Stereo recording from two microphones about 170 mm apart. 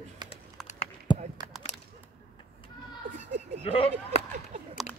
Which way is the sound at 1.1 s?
30° left (ahead or behind).